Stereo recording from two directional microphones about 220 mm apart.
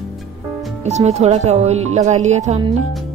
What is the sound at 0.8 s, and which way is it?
Speech, 30° right (ahead or behind).